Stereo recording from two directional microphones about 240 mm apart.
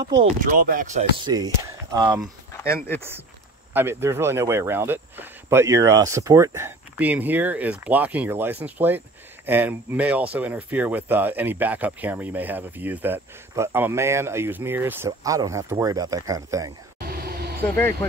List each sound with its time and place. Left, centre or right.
0.0 s speech: right
0.5 s speech: right; by 2.3 s centre
2.6 s speech: centre
3.7 s speech: centre
17.0 s vehicle: right
17.6 s speech: centre